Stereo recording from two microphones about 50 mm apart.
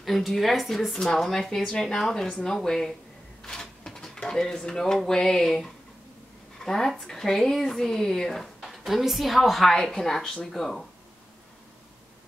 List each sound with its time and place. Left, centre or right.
0.0 s a woman's voice: centre
2.5 s speech: centre
3.4 s printer: centre
4.3 s speech: centre